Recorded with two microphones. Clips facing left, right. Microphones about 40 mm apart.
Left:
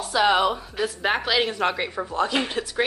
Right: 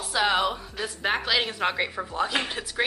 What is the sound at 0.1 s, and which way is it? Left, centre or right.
A woman's voice, centre.